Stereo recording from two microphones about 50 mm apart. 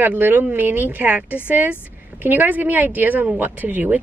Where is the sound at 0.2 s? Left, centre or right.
Right.